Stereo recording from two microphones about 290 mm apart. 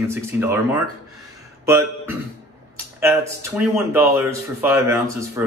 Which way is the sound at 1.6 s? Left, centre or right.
Centre.